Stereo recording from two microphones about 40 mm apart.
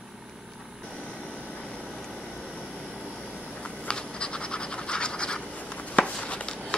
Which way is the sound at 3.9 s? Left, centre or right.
Left.